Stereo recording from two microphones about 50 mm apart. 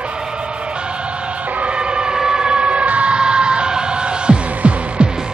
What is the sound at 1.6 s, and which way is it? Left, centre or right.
Emergency vehicle, right.